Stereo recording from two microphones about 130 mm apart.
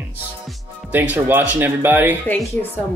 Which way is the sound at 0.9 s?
15° right (ahead or behind).